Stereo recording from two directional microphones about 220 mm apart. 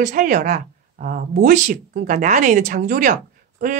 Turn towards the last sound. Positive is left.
turn(degrees=-35)  # may be behind; listen again after turning